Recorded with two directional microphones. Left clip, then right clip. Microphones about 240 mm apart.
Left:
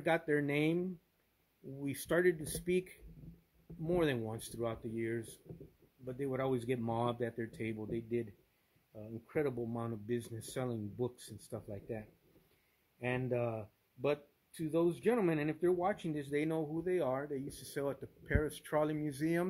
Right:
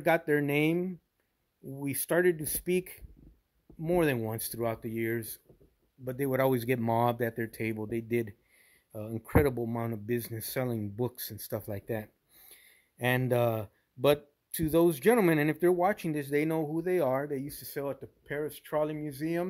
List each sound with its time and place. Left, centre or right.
0.0 s speech: centre